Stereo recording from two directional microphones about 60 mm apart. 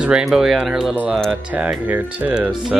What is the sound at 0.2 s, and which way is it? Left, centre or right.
Speech, centre.